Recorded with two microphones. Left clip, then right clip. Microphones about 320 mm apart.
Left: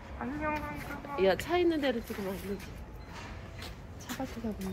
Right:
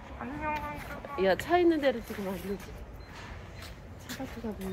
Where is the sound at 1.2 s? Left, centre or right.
Right.